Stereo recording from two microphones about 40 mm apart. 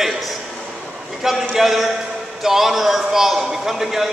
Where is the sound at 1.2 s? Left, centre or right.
Centre.